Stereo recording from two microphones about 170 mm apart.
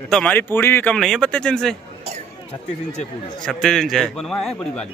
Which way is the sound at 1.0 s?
Centre (ahead or behind).